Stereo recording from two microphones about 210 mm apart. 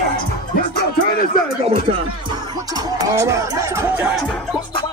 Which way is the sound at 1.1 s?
40° left (ahead or behind).